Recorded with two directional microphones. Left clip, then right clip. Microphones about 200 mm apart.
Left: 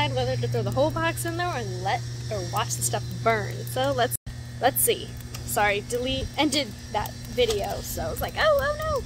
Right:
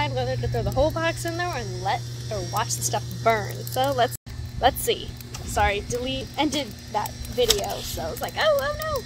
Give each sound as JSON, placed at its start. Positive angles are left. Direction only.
{"t": 0.0, "sound": "speech", "side_deg": 25}